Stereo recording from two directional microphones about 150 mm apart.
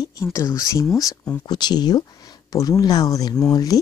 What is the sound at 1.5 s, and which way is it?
Speech, 30° left (ahead or behind).